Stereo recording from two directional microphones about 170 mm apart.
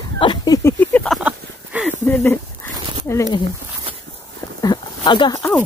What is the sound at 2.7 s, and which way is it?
Dog, 30° right (ahead or behind).